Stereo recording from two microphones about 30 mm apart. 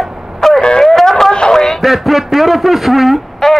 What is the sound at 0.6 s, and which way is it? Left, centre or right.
Speech, left.